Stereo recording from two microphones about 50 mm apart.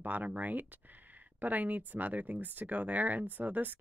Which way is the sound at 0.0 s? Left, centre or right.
Right.